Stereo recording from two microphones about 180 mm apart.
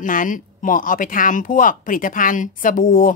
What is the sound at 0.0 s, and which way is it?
Speech, 45° left (ahead or behind).